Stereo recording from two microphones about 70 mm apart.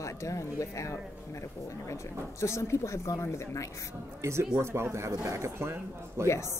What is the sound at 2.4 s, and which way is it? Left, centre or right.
A woman's voice, left.